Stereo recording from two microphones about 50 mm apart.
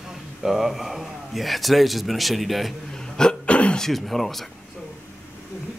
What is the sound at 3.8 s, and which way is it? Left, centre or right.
Speech, centre.